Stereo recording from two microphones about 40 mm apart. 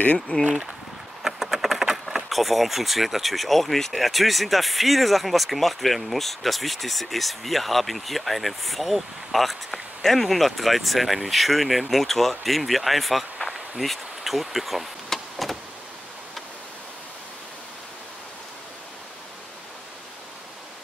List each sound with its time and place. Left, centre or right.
0.3 s speech: left
1.2 s a sound: centre
2.2 s speech: centre
15.0 s vehicle: centre